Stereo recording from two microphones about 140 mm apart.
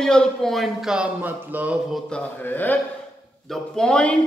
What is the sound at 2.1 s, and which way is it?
Mantra, 10° left (ahead or behind).